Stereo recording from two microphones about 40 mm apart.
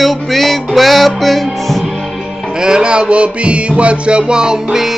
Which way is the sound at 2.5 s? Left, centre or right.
Right.